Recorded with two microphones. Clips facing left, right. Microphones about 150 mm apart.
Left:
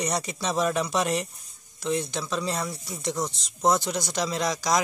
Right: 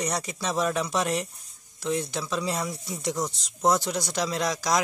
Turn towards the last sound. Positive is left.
turn(degrees=0)  # may be behind; listen again after turning